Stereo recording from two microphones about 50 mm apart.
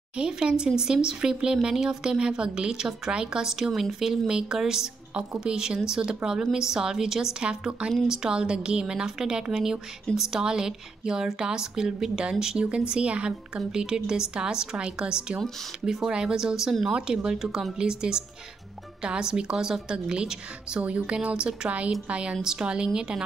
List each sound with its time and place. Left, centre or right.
0.2 s speech: centre